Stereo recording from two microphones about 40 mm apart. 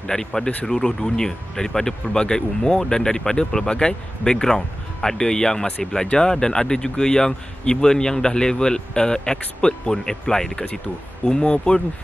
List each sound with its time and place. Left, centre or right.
0.0 s speech: centre